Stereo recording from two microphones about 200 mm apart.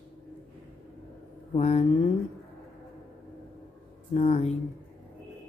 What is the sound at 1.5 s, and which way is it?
Speech, 30° left (ahead or behind).